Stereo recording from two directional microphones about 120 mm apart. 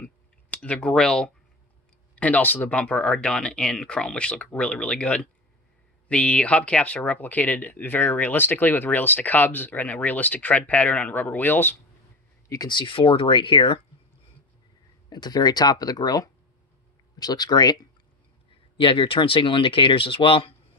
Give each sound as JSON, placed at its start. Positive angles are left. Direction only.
{"t": 0.0, "sound": "clicking", "side_deg": 10}
{"t": 2.1, "sound": "speech", "side_deg": 10}
{"t": 12.4, "sound": "speech", "side_deg": 35}
{"t": 15.0, "sound": "speech", "side_deg": 35}
{"t": 18.5, "sound": "speech", "side_deg": 45}